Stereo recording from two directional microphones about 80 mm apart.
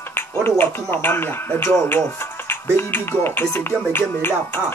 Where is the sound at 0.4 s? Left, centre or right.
Left.